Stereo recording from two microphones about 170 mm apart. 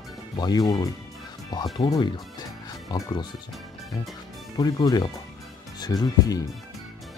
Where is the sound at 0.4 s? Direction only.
25° left (ahead or behind).